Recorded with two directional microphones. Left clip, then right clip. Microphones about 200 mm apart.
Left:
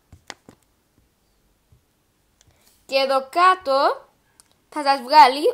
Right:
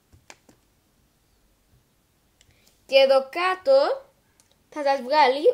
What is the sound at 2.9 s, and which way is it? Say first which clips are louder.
A woman's voice: right 2 dB; 70° left (ahead or behind).